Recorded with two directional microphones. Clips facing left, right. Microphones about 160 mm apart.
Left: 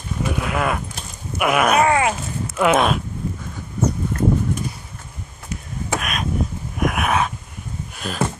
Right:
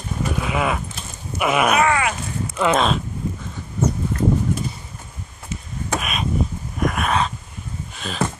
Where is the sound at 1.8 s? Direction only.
35° left (ahead or behind).